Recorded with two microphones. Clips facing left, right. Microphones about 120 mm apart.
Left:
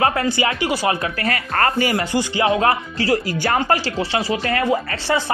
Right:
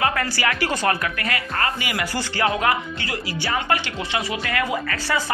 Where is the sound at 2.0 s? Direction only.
20° left (ahead or behind).